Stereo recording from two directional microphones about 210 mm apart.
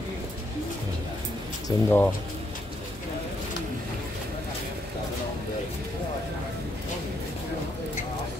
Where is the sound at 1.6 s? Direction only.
10° left (ahead or behind).